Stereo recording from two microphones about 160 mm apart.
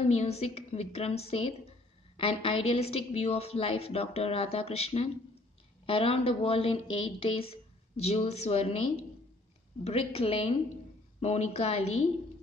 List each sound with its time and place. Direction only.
0.0 s a woman's voice: 40° left (ahead or behind)
9.8 s a woman's voice: 40° left (ahead or behind)